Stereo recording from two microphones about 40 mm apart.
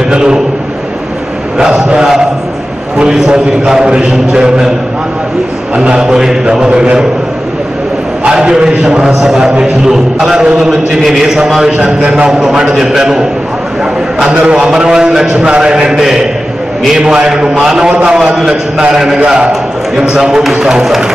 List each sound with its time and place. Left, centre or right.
0.1 s a sound: centre
1.6 s mantra: centre
3.0 s a man's voice: centre
5.8 s a man's voice: right
8.3 s a man's voice: right
8.8 s a man's voice: centre
11.1 s a man's voice: centre
12.0 s a man's voice: right
12.3 s a man's voice: centre
14.5 s a man's voice: right
17.3 s a man's voice: centre
18.1 s a man's voice: centre
20.0 s a man's voice: centre